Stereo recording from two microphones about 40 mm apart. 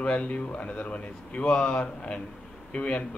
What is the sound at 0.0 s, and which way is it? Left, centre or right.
Speech, left.